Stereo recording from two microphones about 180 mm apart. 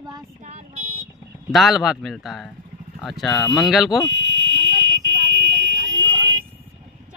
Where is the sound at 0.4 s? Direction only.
40° right (ahead or behind).